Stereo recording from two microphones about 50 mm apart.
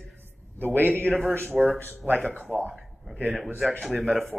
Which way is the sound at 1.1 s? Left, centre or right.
Left.